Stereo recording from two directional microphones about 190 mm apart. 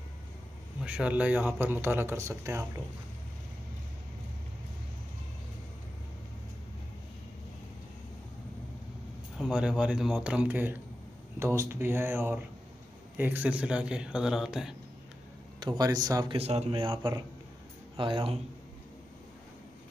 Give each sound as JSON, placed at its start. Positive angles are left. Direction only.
{"t": 0.8, "sound": "speech", "side_deg": -5}
{"t": 9.4, "sound": "speech", "side_deg": -5}
{"t": 15.6, "sound": "a man's voice", "side_deg": -20}
{"t": 16.3, "sound": "a man's voice", "side_deg": -30}